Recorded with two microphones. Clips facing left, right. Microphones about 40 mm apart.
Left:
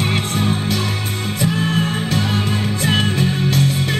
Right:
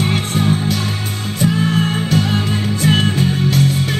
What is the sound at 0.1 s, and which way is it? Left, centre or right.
Music, left.